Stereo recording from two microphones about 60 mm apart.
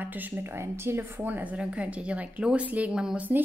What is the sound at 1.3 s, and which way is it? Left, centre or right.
A woman's voice, right.